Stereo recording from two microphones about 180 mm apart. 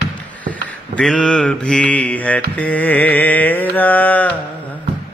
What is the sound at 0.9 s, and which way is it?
Mantra, 5° left (ahead or behind).